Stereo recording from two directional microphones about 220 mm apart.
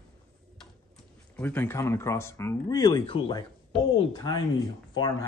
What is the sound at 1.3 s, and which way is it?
Speech, 10° left (ahead or behind).